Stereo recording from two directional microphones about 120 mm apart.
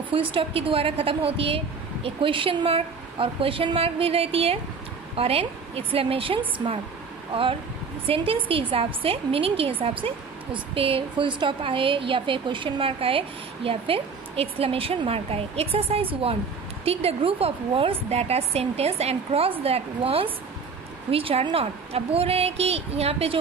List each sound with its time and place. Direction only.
0.1 s a woman's voice: 45° right (ahead or behind)
8.1 s a woman's voice: 50° right (ahead or behind)